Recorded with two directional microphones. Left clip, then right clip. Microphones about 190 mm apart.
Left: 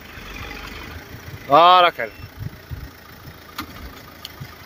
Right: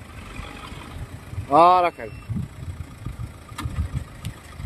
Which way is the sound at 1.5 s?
10° right (ahead or behind).